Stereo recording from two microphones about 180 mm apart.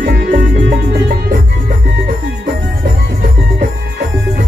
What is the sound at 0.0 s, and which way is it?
Music, 50° right (ahead or behind).